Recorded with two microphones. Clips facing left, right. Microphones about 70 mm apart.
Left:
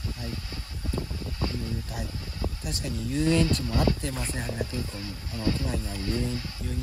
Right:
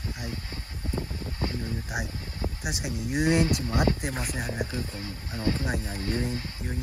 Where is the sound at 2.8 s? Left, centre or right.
Right.